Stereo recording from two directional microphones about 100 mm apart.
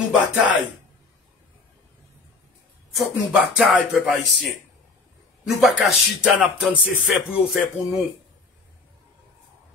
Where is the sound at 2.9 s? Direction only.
5° right (ahead or behind).